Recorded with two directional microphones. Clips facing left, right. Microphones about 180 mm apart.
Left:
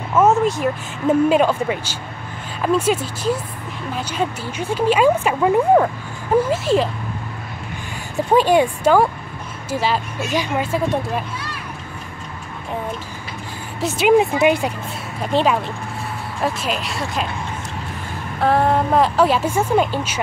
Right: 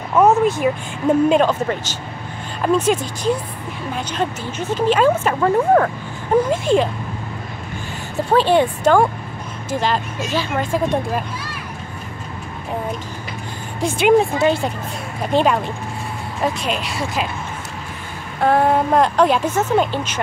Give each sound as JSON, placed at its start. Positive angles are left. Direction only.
{"t": 0.2, "sound": "a woman's voice", "side_deg": 0}
{"t": 8.3, "sound": "speech", "side_deg": 10}
{"t": 13.7, "sound": "a woman's voice", "side_deg": 0}
{"t": 14.4, "sound": "speech", "side_deg": 15}
{"t": 15.3, "sound": "a woman's voice", "side_deg": 0}
{"t": 18.4, "sound": "a woman's voice", "side_deg": 0}